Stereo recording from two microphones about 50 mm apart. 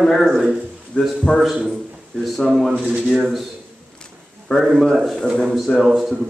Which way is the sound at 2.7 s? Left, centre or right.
Right.